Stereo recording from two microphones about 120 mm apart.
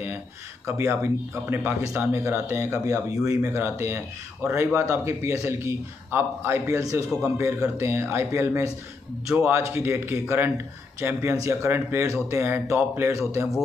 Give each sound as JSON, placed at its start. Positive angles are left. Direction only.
{"t": 0.7, "sound": "speech", "side_deg": -20}